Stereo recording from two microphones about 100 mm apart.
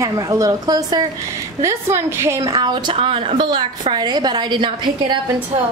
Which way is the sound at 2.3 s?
40° right (ahead or behind).